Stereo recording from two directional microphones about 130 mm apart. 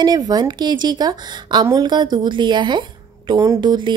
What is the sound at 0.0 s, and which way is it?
A woman's voice, 30° right (ahead or behind).